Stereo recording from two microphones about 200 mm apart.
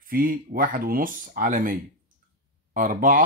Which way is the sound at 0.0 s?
45° right (ahead or behind).